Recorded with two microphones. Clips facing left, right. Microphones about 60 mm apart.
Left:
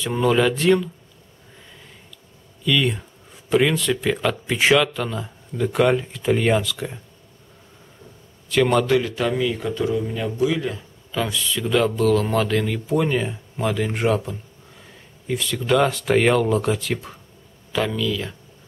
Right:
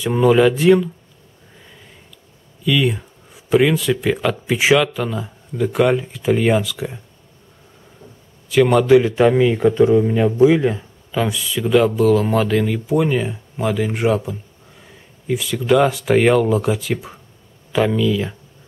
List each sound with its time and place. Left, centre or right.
0.0 s speech: centre
2.6 s speech: centre
8.5 s a man's voice: centre; by 10.8 s right
11.1 s speech: centre